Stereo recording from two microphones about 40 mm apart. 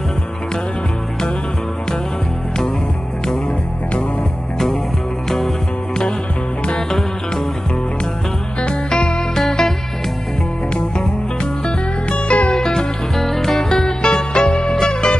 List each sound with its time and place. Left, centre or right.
8.9 s music: centre
12.1 s music: left
12.5 s music: centre